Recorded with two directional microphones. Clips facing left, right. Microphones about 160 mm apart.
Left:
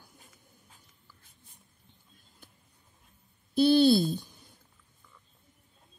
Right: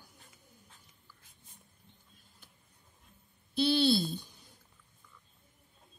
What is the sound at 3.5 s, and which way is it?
Speech, 45° left (ahead or behind).